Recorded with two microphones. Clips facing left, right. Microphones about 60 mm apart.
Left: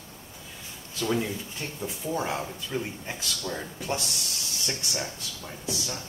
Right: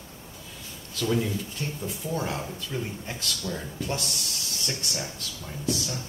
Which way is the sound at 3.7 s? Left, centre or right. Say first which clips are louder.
Even; centre.